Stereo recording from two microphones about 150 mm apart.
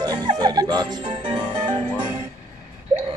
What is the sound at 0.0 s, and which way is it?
Music, 25° right (ahead or behind).